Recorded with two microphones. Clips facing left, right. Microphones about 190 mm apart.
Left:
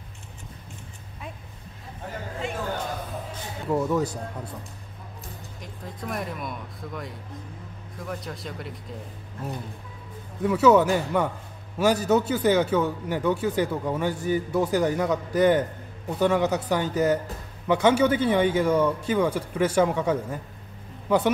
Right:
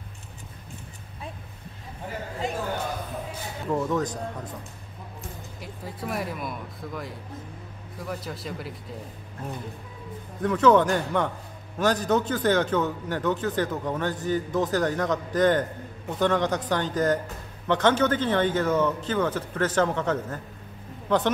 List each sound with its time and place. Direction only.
2.4 s a man's voice: 35° right (ahead or behind)
3.6 s a man's voice: 10° left (ahead or behind)
5.6 s speech: 5° right (ahead or behind)
10.4 s a man's voice: 10° left (ahead or behind)